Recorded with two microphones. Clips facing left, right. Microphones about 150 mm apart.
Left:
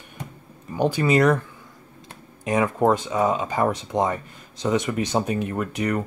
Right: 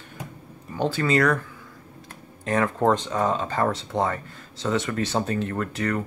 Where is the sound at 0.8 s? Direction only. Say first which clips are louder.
Left 3 dB; 15° left (ahead or behind).